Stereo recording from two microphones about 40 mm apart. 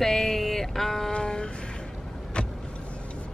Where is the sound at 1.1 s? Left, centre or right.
Centre.